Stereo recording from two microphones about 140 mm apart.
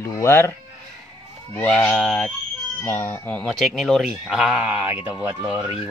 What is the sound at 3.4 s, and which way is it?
Speech, centre (ahead or behind).